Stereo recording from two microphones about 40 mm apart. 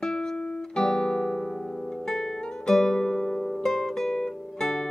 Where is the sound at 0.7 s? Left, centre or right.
Centre.